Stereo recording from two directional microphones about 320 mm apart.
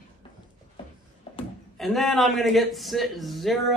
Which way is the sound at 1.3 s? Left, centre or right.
Centre.